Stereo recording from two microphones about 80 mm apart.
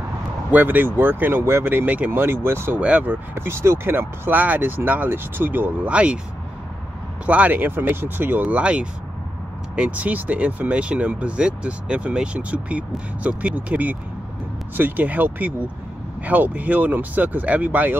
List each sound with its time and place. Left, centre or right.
0.5 s speech: right
7.2 s speech: centre